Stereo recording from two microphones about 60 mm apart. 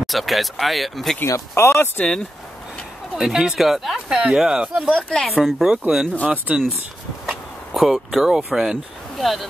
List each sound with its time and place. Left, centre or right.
0.0 s speech: centre
1.2 s speech: left
3.2 s speech: centre
4.9 s speech: centre
5.4 s speech: centre
6.2 s speech: right
7.2 s a sound: centre
8.5 s speech: centre